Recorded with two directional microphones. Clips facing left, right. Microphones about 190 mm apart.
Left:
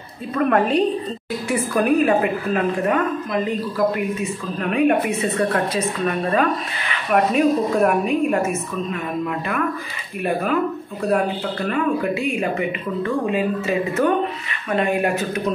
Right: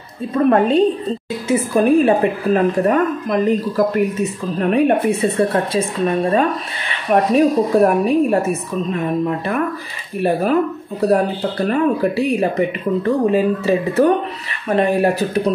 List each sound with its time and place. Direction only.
0.3 s a woman's voice: 25° right (ahead or behind)
6.9 s a sound: 35° right (ahead or behind)
7.3 s a woman's voice: 35° right (ahead or behind)